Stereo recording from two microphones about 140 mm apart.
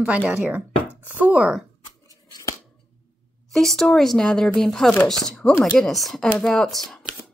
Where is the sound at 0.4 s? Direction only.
10° right (ahead or behind).